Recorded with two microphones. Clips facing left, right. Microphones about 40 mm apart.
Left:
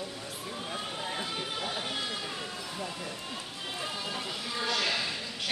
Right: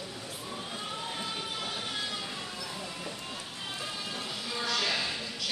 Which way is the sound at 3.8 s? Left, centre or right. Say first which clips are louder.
Left 3 dB; centre.